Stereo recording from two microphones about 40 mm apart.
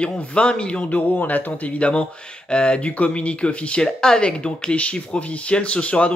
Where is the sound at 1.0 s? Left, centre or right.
Left.